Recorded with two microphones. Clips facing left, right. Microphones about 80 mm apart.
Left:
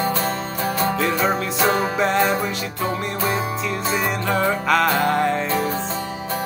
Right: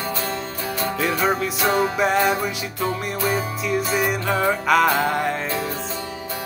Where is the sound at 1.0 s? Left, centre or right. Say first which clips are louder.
Left 1 dB; centre.